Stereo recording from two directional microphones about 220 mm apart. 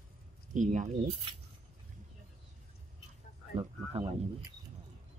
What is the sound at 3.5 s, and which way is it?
Speech, 25° right (ahead or behind).